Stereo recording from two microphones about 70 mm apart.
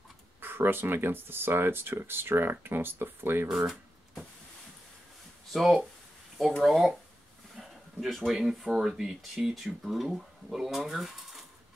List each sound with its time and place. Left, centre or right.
0.4 s speech: right
3.4 s a sound: centre
5.5 s speech: centre